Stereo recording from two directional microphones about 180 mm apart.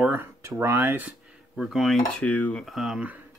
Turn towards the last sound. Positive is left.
turn(degrees=-5)  # may be behind; listen again after turning